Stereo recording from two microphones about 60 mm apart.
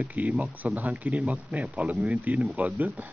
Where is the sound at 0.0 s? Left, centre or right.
Right.